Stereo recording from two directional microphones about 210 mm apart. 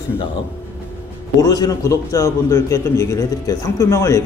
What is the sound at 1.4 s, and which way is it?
Speech, 15° left (ahead or behind).